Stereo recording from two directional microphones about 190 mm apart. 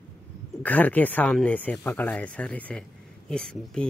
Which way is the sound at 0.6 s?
10° left (ahead or behind).